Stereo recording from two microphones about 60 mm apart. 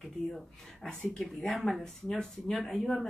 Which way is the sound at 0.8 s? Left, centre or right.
Centre.